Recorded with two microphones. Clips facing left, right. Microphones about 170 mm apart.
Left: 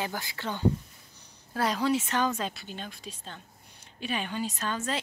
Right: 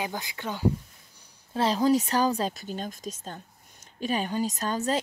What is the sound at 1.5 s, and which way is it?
Speech, 30° right (ahead or behind).